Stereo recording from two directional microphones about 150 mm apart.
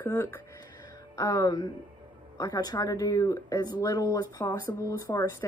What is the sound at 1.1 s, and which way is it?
A woman's voice, 25° left (ahead or behind).